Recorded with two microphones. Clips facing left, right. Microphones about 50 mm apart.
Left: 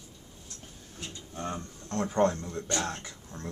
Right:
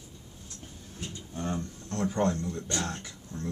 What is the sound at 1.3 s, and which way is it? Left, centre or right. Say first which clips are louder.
Speech: right 2 dB; centre.